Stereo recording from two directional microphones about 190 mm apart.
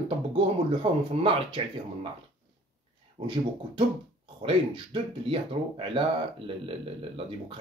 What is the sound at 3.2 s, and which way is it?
Speech, 20° right (ahead or behind).